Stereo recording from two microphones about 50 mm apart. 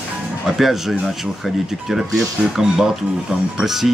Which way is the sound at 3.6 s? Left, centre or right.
Centre.